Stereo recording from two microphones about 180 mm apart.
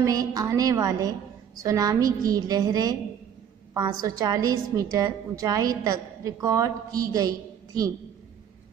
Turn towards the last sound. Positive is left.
turn(degrees=-20)  # may be behind; listen again after turning